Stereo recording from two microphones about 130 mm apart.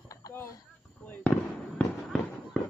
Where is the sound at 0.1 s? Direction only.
25° left (ahead or behind).